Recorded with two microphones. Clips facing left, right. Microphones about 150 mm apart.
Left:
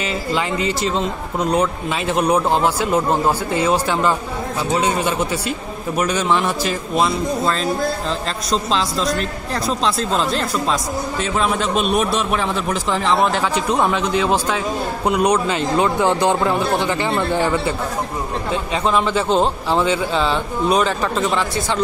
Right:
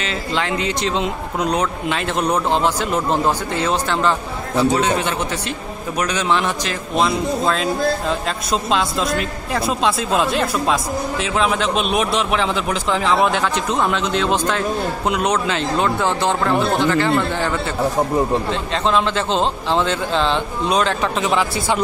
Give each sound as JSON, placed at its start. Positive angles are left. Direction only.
{"t": 0.0, "sound": "speech", "side_deg": 5}